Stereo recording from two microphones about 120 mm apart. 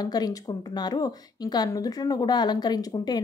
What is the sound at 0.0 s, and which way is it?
A woman's voice, 35° left (ahead or behind).